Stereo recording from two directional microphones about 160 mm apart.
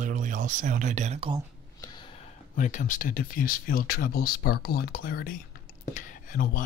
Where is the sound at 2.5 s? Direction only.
55° left (ahead or behind).